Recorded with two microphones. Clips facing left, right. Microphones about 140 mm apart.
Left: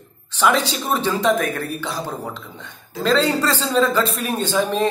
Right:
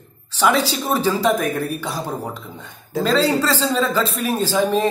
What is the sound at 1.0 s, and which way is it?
Speech, 5° right (ahead or behind).